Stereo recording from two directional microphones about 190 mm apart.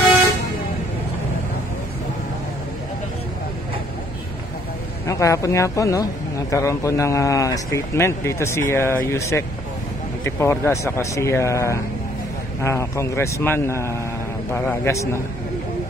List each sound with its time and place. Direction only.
5.0 s speech: 15° left (ahead or behind)